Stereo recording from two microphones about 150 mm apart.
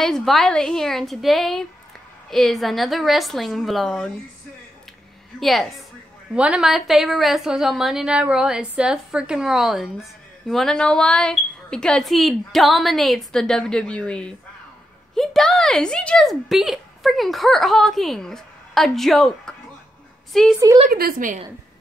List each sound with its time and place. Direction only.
0.0 s speech: centre (ahead or behind)
5.4 s speech: centre (ahead or behind)
20.9 s a woman's voice: 75° right (ahead or behind)